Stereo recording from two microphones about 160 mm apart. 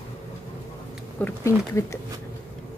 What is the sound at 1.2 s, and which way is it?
Speech, 15° left (ahead or behind).